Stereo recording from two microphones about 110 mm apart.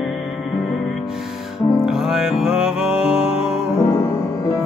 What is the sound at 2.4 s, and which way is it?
Music, 5° right (ahead or behind).